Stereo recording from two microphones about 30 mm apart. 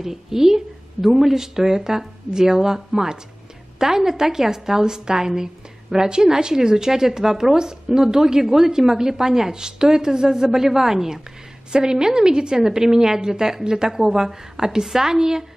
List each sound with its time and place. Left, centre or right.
0.0 s a woman's voice: centre